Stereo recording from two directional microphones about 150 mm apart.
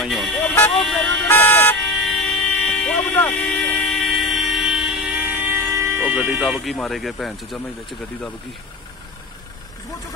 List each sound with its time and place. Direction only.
0.0 s vehicle: centre (ahead or behind)
1.2 s vehicle: 15° left (ahead or behind); by 5.1 s 5° right (ahead or behind)
5.2 s speech: 15° right (ahead or behind); by 7.6 s centre (ahead or behind)